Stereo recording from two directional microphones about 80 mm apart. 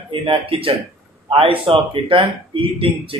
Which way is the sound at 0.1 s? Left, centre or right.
Right.